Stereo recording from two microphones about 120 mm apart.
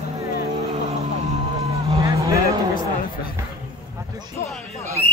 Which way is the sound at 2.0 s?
25° right (ahead or behind).